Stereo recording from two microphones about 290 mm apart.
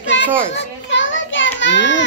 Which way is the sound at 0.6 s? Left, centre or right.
Left.